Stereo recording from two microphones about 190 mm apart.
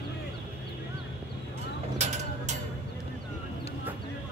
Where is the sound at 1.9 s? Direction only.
35° right (ahead or behind).